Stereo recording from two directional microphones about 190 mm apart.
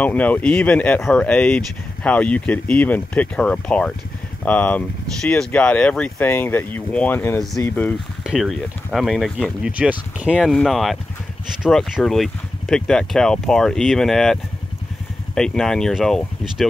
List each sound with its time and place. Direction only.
0.0 s speech: 10° left (ahead or behind)
8.2 s speech: centre (ahead or behind)